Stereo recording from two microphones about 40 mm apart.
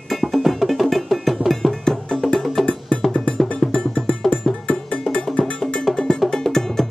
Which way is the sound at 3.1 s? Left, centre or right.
Left.